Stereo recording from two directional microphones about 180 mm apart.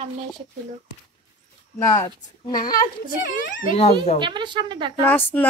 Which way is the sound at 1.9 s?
25° left (ahead or behind).